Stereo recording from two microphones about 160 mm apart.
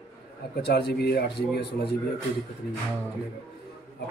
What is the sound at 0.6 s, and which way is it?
Speech, 90° left.